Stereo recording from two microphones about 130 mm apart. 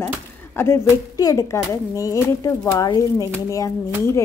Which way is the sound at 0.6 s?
25° left (ahead or behind).